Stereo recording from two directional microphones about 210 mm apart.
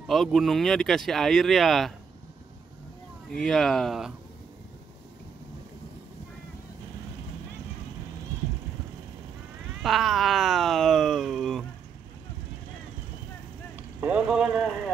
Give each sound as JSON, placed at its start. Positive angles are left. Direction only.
{"t": 0.0, "sound": "speech", "side_deg": 0}
{"t": 3.3, "sound": "speech", "side_deg": 5}
{"t": 9.8, "sound": "speech", "side_deg": 0}
{"t": 14.0, "sound": "speech", "side_deg": -5}